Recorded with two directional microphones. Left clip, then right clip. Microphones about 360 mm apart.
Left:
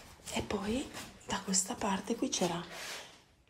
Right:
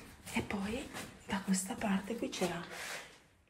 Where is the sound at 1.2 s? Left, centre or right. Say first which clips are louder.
Left 4 dB; centre.